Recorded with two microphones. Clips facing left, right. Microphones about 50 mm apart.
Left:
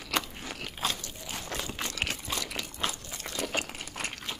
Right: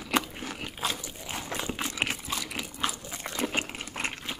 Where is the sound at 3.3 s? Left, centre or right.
Right.